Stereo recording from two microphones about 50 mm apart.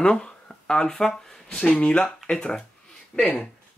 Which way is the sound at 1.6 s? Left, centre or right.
Left.